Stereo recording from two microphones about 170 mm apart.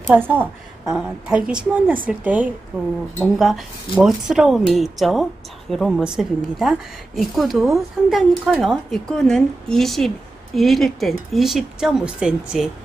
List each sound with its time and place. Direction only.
0.1 s a woman's voice: 10° right (ahead or behind)